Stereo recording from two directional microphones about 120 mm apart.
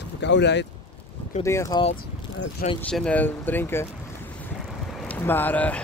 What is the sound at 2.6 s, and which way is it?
Speech, 90° left.